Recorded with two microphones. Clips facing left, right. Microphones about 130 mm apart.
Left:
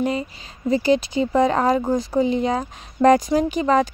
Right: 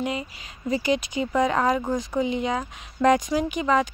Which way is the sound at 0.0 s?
35° left (ahead or behind).